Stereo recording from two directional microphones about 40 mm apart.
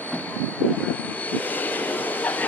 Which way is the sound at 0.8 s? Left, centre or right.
Left.